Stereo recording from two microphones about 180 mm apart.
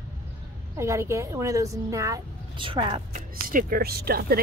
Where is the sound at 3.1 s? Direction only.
50° right (ahead or behind).